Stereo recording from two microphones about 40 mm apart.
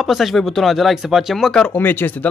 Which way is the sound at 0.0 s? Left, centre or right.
Centre.